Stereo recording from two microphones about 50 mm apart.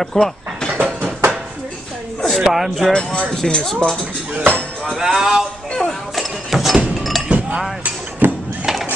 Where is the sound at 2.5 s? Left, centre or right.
Centre.